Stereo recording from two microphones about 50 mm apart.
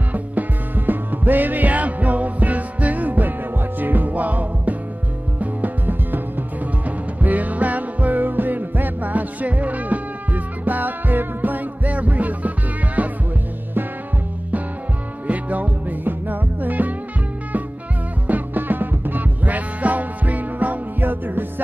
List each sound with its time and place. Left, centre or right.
0.1 s music: right
15.2 s music: right
18.2 s music: right